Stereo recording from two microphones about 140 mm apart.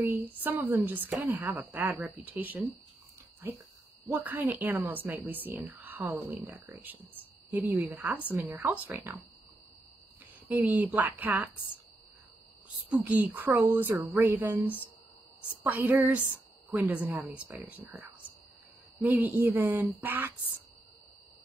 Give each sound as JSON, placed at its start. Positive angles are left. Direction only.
{"t": 0.0, "sound": "speech", "side_deg": -15}
{"t": 4.1, "sound": "speech", "side_deg": -15}
{"t": 10.5, "sound": "speech", "side_deg": -10}
{"t": 12.6, "sound": "speech", "side_deg": -10}